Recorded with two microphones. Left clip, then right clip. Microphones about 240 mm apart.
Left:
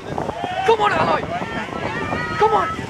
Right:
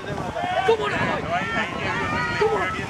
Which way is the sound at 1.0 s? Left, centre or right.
Centre.